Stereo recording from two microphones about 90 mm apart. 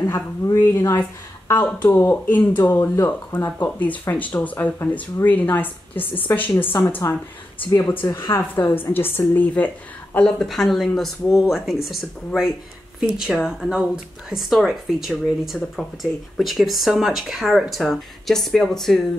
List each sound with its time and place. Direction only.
0.0 s speech: 40° left (ahead or behind)
1.5 s a woman's voice: 20° left (ahead or behind)
3.6 s a woman's voice: 15° left (ahead or behind); by 8.2 s 35° left (ahead or behind)
8.5 s a woman's voice: 25° left (ahead or behind)
10.1 s speech: 5° left (ahead or behind)
13.0 s speech: centre (ahead or behind)